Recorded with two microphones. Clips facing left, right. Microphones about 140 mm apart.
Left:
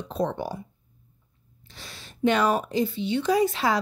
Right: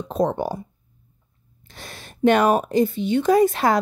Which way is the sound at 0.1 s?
45° right (ahead or behind).